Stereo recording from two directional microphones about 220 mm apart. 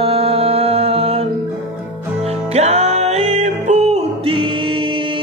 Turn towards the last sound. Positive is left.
turn(degrees=-25)  # may be behind; listen again after turning